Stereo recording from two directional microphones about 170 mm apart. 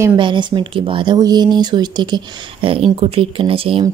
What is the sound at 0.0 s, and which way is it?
A woman's voice, 25° right (ahead or behind).